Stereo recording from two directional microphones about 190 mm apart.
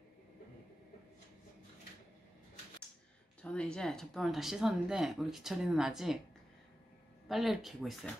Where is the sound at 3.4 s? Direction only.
5° left (ahead or behind).